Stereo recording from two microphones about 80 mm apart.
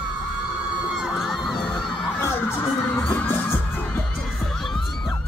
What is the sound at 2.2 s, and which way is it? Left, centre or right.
Music, left.